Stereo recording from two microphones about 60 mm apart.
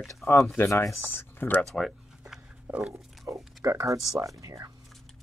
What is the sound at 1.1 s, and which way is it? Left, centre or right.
Speech, left.